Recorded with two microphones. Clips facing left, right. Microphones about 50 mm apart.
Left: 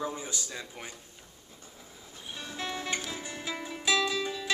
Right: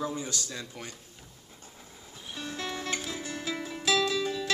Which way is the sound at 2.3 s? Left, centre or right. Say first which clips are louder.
Right 1 dB; centre.